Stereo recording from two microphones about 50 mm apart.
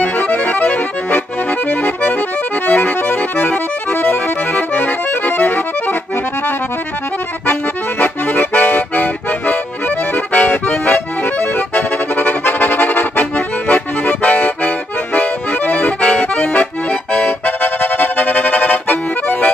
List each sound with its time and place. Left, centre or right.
0.0 s accordion: left
8.0 s accordion: left
17.1 s music: left